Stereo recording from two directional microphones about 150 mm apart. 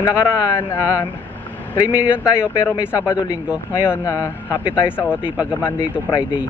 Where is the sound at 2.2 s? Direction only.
15° left (ahead or behind).